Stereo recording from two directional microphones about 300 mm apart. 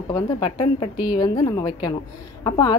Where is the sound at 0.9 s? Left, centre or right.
Centre.